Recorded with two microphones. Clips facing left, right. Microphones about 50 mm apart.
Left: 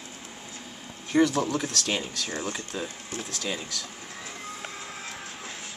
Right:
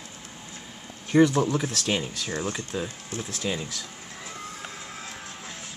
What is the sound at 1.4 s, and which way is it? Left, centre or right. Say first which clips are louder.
Speech: right 2 dB; centre.